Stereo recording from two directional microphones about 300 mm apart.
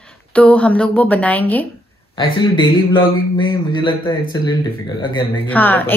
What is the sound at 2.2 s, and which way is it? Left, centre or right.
A man's voice, centre.